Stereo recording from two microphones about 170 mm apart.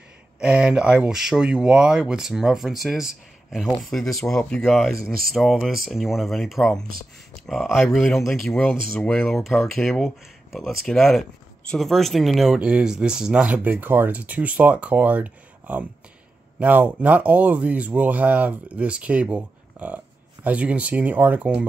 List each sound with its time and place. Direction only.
0.4 s speech: 5° right (ahead or behind)